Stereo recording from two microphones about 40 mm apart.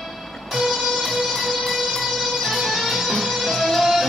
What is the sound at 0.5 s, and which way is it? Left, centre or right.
Music, centre.